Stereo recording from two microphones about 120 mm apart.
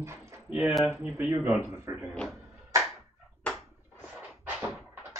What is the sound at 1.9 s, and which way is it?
Speech, 25° right (ahead or behind).